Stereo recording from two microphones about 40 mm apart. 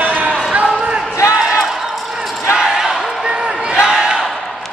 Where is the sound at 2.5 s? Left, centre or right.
Centre.